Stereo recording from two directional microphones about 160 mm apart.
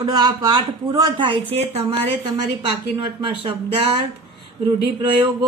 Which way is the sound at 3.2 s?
35° right (ahead or behind).